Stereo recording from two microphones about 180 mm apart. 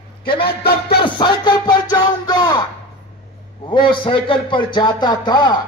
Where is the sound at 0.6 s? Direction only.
60° left (ahead or behind).